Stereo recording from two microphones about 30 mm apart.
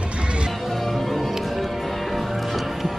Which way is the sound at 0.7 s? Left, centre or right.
Centre.